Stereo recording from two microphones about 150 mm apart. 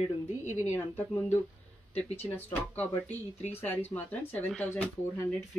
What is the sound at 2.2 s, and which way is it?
Speech, 15° left (ahead or behind).